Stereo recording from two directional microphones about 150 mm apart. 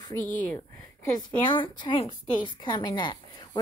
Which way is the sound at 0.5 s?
15° left (ahead or behind).